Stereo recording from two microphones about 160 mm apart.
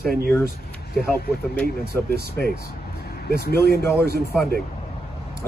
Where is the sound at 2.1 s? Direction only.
90° right.